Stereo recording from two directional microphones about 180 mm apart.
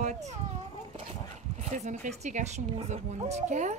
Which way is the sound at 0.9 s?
35° right (ahead or behind).